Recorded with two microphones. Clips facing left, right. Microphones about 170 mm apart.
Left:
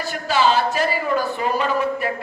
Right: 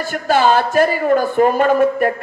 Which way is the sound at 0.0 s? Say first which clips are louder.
Right 4 dB; 50° right (ahead or behind).